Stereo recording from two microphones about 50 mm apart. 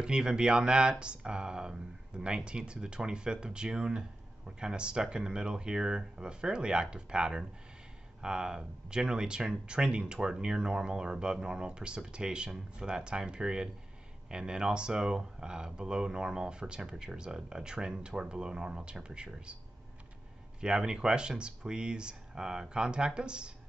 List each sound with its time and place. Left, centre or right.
0.0 s speech: centre
20.6 s speech: centre